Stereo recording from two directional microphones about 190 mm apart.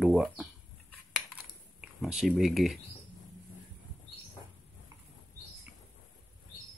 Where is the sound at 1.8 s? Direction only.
5° right (ahead or behind).